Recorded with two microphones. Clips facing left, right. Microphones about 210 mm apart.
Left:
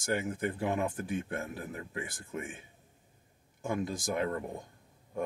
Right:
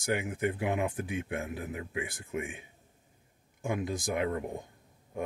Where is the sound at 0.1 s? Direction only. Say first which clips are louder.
Right 1 dB; 10° right (ahead or behind).